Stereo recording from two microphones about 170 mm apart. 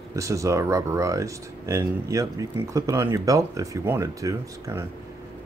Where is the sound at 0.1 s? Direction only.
20° right (ahead or behind).